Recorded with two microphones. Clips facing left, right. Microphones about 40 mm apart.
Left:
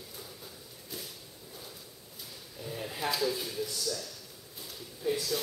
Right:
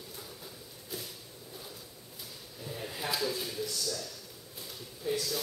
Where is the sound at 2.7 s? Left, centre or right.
Centre.